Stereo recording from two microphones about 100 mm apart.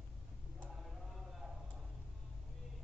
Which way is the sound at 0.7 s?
Centre (ahead or behind).